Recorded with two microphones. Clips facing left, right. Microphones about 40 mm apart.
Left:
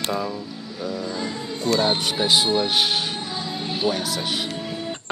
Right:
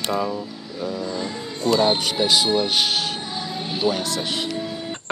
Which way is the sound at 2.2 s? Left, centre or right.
Left.